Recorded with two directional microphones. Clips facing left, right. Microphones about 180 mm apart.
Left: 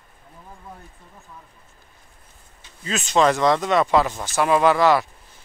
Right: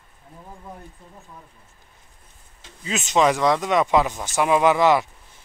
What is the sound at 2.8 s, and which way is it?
Speech, 15° right (ahead or behind).